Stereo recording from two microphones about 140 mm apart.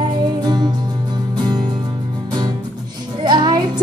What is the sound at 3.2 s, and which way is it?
Music, 30° right (ahead or behind).